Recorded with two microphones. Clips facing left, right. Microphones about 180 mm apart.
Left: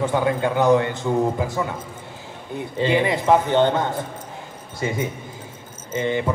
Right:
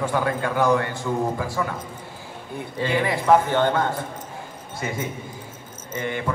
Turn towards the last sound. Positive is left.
turn(degrees=20)  # may be behind; listen again after turning